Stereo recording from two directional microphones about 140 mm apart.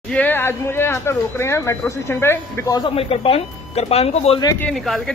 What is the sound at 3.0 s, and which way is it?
Speech, 45° left (ahead or behind).